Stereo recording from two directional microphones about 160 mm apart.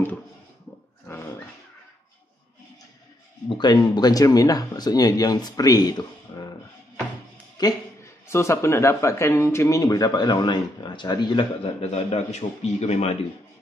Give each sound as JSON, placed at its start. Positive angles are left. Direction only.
{"t": 1.0, "sound": "a sound", "side_deg": 15}
{"t": 3.4, "sound": "speech", "side_deg": 25}
{"t": 7.5, "sound": "a man's voice", "side_deg": 20}